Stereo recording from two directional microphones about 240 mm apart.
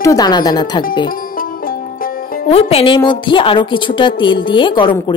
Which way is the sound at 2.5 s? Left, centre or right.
Left.